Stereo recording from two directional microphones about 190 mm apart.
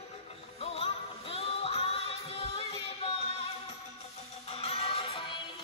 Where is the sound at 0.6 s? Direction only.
30° left (ahead or behind).